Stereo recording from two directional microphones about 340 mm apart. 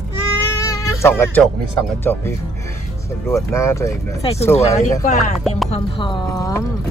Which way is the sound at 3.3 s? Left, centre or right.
Centre.